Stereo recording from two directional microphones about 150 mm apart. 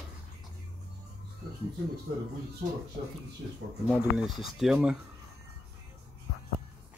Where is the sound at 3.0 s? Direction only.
90° right.